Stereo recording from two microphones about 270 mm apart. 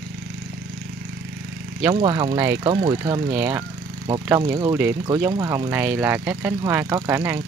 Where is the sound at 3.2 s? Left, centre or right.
Centre.